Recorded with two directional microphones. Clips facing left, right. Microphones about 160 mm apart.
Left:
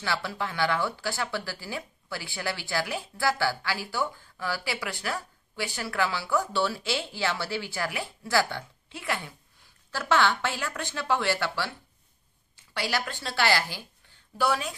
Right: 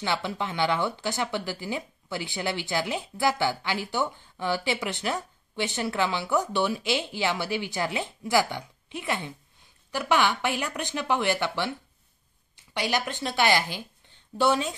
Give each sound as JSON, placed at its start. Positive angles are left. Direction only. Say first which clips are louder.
{"t": 0.0, "sound": "speech", "louder": "right 2 dB", "side_deg": -20}
{"t": 12.7, "sound": "a woman's voice", "louder": "right 3 dB", "side_deg": -20}